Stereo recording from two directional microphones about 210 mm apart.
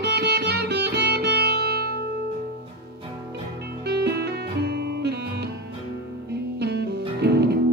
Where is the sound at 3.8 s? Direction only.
50° right (ahead or behind).